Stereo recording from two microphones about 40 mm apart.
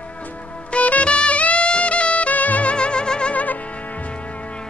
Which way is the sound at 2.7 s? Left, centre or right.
Left.